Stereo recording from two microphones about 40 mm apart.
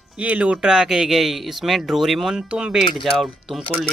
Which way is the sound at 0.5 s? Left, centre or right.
Centre.